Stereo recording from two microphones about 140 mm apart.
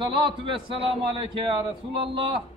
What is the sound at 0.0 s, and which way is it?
A man's voice, 35° right (ahead or behind).